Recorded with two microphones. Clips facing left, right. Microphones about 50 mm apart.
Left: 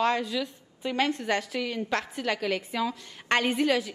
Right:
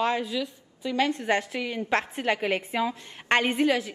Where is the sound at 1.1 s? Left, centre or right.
Right.